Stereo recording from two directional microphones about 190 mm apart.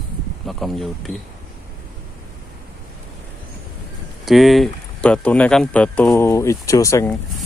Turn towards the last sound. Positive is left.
turn(degrees=15)  # may be behind; listen again after turning